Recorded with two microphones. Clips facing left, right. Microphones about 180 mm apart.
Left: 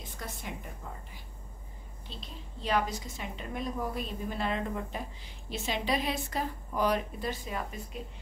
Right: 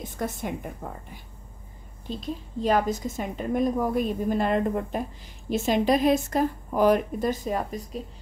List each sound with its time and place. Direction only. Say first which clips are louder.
0.2 s a woman's voice: right 11 dB; 50° right (ahead or behind)
2.0 s a woman's voice: right 15 dB; 45° right (ahead or behind)